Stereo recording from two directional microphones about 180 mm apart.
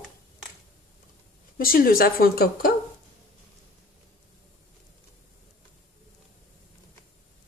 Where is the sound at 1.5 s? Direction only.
55° left (ahead or behind).